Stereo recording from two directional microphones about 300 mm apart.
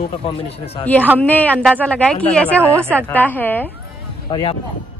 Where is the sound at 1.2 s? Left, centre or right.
Centre.